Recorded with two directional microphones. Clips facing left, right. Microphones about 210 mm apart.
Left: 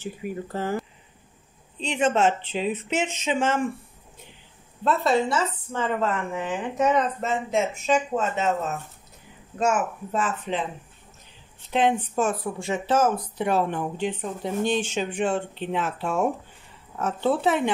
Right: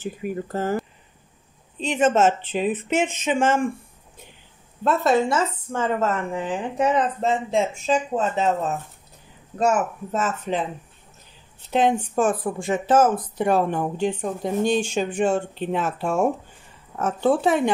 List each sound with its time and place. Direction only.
0.0 s speech: 45° right (ahead or behind)
2.1 s speech: 45° right (ahead or behind)
4.8 s speech: 50° right (ahead or behind)
11.7 s speech: 45° right (ahead or behind)